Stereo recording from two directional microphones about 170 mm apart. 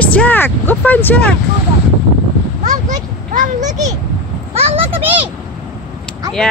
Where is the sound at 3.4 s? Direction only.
45° right (ahead or behind).